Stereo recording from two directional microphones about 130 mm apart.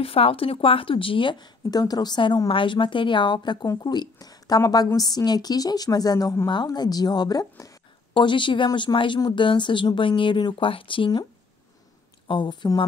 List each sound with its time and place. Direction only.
0.0 s speech: 45° left (ahead or behind); by 7.7 s 25° left (ahead or behind)
8.1 s speech: 40° left (ahead or behind)
12.3 s speech: 35° left (ahead or behind)